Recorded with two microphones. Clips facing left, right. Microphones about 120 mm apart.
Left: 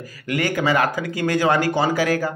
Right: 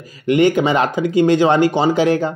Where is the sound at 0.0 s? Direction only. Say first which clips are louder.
Right 10 dB; 20° right (ahead or behind).